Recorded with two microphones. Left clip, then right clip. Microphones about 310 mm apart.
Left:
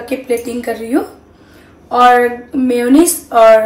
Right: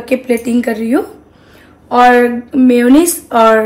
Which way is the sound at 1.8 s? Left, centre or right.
Right.